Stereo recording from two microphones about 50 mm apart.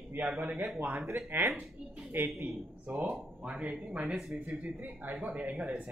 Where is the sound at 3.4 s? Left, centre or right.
Right.